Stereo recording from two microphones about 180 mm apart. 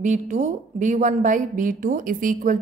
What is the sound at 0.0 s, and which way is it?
A woman's voice, 40° right (ahead or behind).